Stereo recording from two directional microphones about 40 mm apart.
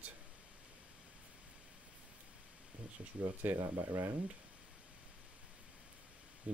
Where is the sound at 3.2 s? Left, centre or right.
Right.